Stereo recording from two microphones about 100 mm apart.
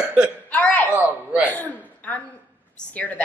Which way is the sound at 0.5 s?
15° left (ahead or behind).